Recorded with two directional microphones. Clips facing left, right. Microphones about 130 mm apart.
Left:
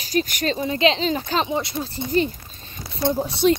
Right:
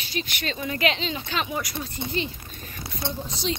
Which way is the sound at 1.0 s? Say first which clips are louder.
Left 7 dB; 40° left (ahead or behind).